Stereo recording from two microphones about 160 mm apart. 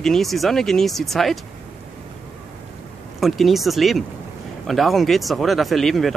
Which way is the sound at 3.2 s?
Centre (ahead or behind).